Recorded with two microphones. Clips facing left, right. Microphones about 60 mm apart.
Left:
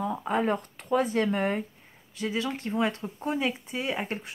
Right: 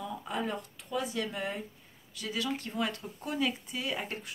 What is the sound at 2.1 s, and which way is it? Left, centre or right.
Speech, left.